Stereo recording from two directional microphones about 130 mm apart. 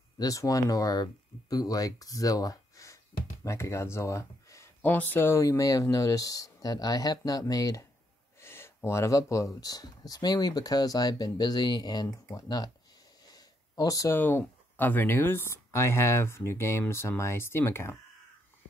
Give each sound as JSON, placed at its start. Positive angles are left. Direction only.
{"t": 0.2, "sound": "speech", "side_deg": 25}